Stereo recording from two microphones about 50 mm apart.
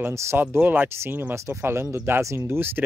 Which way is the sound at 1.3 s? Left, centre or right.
Right.